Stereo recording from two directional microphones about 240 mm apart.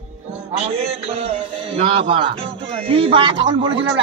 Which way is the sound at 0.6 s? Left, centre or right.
Right.